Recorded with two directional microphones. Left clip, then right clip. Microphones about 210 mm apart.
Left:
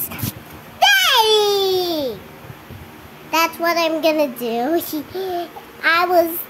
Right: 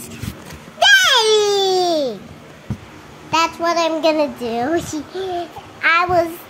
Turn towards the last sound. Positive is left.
turn(degrees=5)  # may be behind; listen again after turning